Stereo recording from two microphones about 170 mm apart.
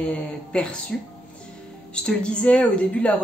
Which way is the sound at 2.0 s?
5° left (ahead or behind).